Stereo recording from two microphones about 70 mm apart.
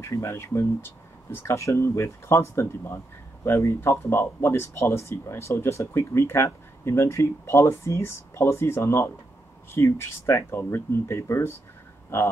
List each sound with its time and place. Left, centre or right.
0.0 s speech: left